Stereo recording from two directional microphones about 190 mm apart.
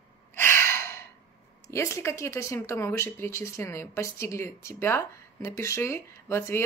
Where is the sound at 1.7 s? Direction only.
15° left (ahead or behind).